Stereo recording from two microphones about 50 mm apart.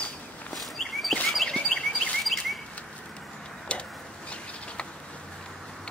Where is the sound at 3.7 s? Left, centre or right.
Left.